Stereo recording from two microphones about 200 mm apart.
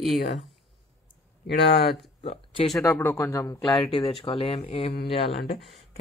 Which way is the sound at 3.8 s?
30° left (ahead or behind).